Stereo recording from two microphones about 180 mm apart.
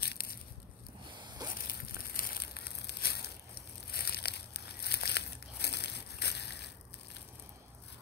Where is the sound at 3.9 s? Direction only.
60° left (ahead or behind).